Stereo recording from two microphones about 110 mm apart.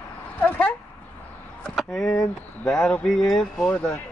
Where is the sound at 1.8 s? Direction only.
5° left (ahead or behind).